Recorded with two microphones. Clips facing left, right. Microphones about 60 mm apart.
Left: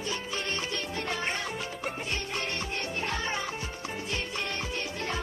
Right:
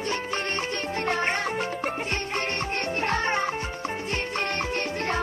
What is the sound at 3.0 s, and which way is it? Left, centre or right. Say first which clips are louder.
Music: right 8 dB; right.